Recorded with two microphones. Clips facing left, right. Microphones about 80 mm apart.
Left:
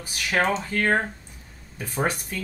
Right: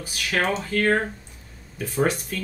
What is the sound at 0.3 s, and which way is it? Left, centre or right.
Speech, left.